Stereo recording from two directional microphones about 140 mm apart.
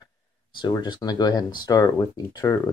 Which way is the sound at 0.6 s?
30° left (ahead or behind).